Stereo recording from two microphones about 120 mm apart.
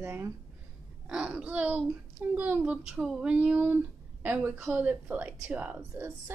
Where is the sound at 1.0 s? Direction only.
10° right (ahead or behind).